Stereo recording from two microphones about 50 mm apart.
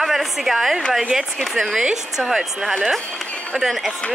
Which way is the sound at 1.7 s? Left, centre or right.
Centre.